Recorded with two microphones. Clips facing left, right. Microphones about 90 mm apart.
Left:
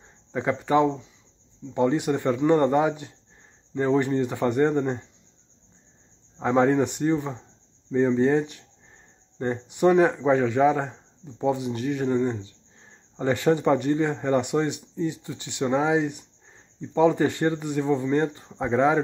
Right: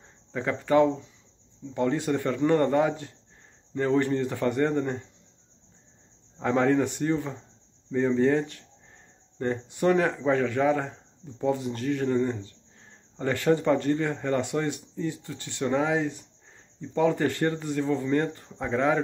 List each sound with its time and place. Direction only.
0.3 s speech: 20° left (ahead or behind)
6.3 s speech: 20° left (ahead or behind)